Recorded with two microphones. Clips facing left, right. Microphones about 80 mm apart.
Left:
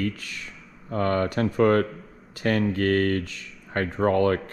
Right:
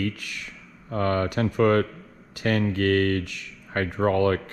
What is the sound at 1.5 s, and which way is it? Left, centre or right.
Speech, left.